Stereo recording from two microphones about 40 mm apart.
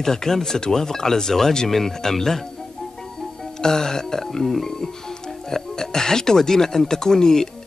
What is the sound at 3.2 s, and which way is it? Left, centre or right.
Music, centre.